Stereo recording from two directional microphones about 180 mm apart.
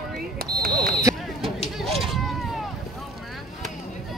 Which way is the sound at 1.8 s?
Centre (ahead or behind).